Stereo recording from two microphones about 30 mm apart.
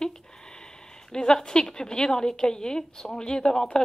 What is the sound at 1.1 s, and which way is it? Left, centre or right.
Speech, centre.